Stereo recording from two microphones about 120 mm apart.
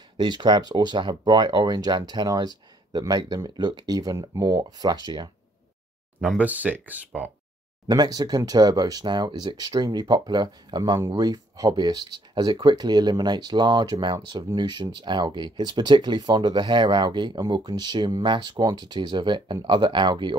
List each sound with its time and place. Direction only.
0.2 s speech: 40° right (ahead or behind)
6.2 s speech: 10° right (ahead or behind)
7.9 s speech: 35° right (ahead or behind)